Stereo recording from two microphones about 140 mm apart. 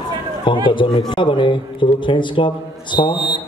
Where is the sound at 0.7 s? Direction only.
35° left (ahead or behind).